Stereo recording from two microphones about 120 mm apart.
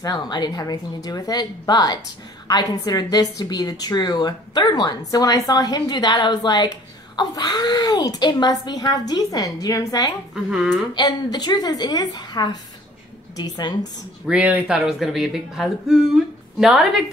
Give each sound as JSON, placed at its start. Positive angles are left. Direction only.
{"t": 0.0, "sound": "a woman's voice", "side_deg": 35}
{"t": 10.3, "sound": "speech", "side_deg": -5}
{"t": 11.0, "sound": "a woman's voice", "side_deg": 35}
{"t": 14.2, "sound": "speech", "side_deg": -10}